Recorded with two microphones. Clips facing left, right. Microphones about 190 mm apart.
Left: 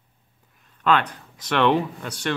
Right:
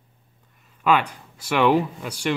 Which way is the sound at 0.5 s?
5° right (ahead or behind).